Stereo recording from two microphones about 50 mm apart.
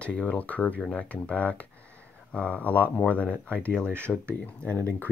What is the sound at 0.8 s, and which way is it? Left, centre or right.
Speech, centre.